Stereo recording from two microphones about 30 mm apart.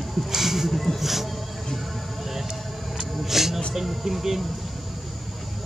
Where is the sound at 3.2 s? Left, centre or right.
Centre.